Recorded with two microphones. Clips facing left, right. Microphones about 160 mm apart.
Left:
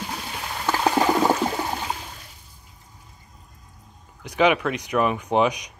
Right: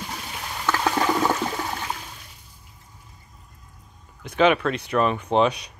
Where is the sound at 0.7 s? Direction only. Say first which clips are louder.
Left 2 dB; 20° left (ahead or behind).